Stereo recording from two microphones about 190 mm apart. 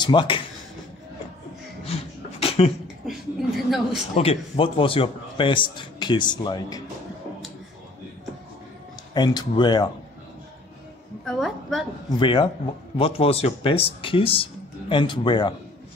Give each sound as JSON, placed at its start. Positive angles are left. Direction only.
{"t": 0.0, "sound": "a man's voice", "side_deg": 25}
{"t": 2.4, "sound": "a sound", "side_deg": 30}
{"t": 3.1, "sound": "a sound", "side_deg": 0}
{"t": 4.2, "sound": "a man's voice", "side_deg": 30}
{"t": 9.1, "sound": "a man's voice", "side_deg": 20}
{"t": 11.2, "sound": "a woman's voice", "side_deg": 0}
{"t": 12.1, "sound": "a man's voice", "side_deg": 25}